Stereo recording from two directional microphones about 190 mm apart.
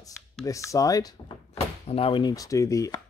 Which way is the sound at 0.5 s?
15° left (ahead or behind).